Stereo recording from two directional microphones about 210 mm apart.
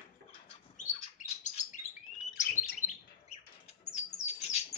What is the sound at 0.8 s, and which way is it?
Bird, 35° left (ahead or behind).